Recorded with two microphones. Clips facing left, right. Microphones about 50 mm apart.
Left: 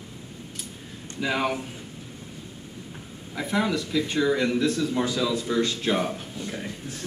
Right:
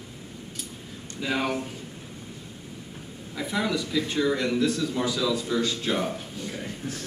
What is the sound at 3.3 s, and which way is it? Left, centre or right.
Speech, centre.